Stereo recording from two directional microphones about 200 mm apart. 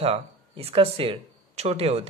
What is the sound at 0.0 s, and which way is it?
Speech, 30° right (ahead or behind).